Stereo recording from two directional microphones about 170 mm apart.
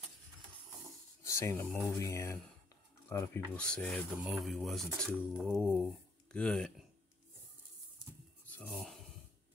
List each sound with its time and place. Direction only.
1.2 s speech: 15° left (ahead or behind)
8.6 s speech: centre (ahead or behind)